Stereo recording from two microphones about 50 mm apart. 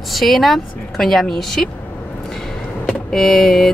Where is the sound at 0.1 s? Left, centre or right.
Centre.